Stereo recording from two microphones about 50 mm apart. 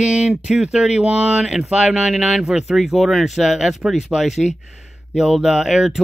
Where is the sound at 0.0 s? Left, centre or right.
Centre.